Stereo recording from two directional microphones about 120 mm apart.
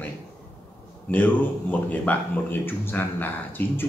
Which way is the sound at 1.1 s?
15° left (ahead or behind).